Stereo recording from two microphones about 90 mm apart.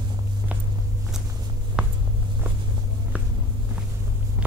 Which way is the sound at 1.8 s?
10° right (ahead or behind).